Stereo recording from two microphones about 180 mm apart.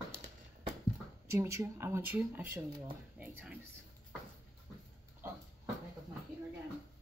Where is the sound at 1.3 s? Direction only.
15° right (ahead or behind).